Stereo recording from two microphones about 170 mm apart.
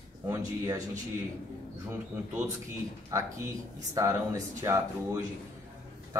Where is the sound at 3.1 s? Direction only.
20° right (ahead or behind).